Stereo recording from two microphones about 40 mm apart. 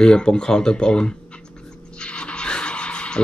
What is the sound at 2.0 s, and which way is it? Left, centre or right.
Music, left.